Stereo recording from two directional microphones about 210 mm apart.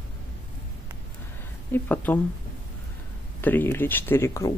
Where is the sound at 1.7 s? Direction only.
10° left (ahead or behind).